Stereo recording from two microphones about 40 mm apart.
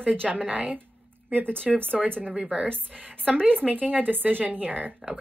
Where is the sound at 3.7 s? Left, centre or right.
Right.